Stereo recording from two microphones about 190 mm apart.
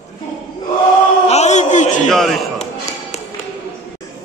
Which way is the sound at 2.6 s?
35° left (ahead or behind).